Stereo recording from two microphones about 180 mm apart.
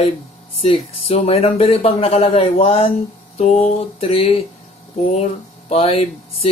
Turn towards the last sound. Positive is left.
turn(degrees=35)  # may be behind; listen again after turning